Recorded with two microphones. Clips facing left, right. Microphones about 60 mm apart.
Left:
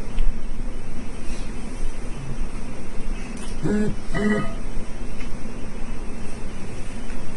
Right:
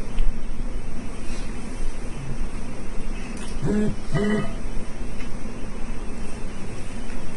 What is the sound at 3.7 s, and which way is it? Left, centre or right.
Music, left.